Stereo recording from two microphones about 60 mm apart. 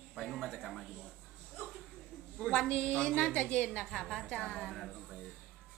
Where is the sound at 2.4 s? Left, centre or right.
Centre.